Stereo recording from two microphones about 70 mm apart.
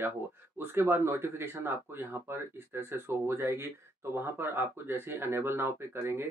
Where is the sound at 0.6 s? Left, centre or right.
Right.